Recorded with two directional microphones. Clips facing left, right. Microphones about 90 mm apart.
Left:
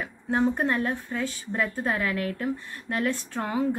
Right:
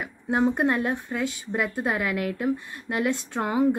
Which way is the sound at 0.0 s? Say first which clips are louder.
Right 1 dB; 15° right (ahead or behind).